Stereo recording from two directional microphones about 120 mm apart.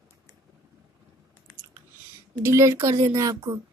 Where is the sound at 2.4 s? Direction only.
25° right (ahead or behind).